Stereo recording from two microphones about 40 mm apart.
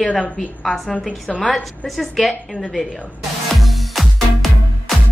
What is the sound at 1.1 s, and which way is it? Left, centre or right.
Speech, left.